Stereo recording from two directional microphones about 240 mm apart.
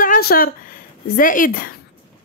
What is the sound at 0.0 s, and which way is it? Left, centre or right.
Speech, left.